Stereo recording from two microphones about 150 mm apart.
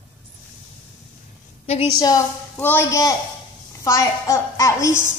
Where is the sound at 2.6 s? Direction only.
15° left (ahead or behind).